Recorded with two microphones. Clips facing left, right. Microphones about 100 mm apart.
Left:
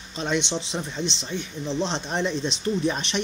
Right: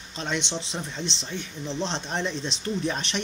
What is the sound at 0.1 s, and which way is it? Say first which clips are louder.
Speech: left 4 dB; 10° left (ahead or behind).